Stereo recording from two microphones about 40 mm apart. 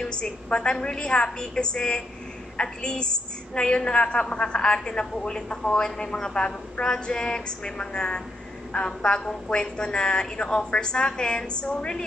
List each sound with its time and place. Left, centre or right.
0.0 s a woman's voice: left